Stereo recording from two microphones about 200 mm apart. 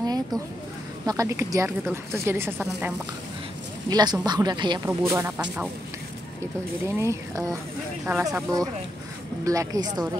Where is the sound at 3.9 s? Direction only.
20° right (ahead or behind).